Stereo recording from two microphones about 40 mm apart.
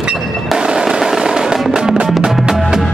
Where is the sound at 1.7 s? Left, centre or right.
Centre.